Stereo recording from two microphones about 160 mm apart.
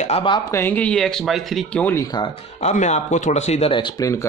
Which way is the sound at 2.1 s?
30° left (ahead or behind).